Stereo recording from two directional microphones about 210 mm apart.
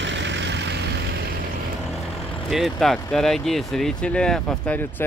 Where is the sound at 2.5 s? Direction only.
Centre (ahead or behind).